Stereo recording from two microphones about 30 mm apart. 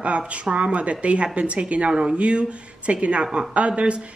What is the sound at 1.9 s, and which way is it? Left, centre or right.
Speech, right.